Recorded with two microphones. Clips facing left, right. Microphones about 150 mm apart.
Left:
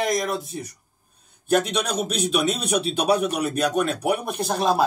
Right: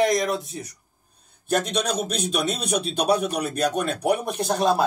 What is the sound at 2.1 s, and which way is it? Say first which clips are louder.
Speech: left 3 dB; 55° left (ahead or behind).